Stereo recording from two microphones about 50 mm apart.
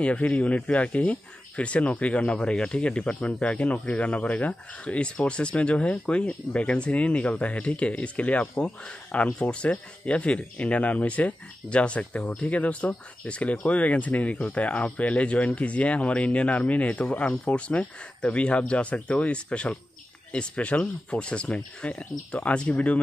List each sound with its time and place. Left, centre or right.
0.0 s speech: left